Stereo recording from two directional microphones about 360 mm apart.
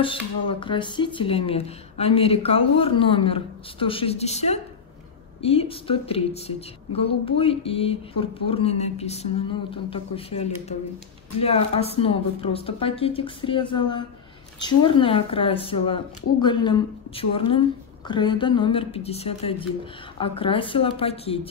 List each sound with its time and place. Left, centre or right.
0.0 s a woman's voice: centre